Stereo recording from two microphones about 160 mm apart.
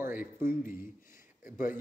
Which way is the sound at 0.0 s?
15° right (ahead or behind).